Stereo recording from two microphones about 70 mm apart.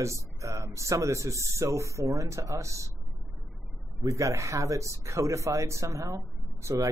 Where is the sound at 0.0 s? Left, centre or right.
Right.